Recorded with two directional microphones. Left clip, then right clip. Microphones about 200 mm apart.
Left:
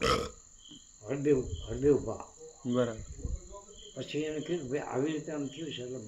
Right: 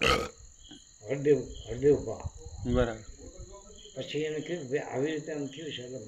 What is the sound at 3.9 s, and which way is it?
Speech, 25° left (ahead or behind).